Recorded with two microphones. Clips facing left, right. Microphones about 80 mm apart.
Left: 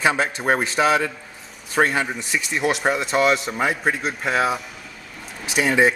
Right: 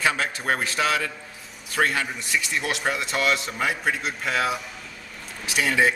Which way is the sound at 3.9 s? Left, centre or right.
Centre.